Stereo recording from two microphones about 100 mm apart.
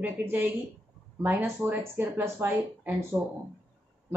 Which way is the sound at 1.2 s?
20° right (ahead or behind).